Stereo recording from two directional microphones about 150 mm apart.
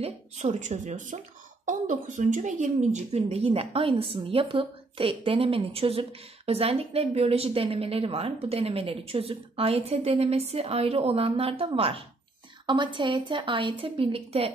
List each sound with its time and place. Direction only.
0.0 s a woman's voice: 50° right (ahead or behind)